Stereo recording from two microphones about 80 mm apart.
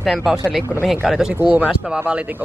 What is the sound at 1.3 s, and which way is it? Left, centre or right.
Speech, centre.